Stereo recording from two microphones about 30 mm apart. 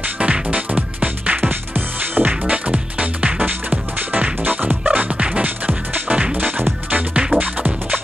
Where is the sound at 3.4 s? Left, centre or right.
Right.